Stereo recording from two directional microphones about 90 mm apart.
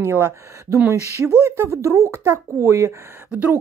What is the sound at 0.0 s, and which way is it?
Speech, 30° right (ahead or behind).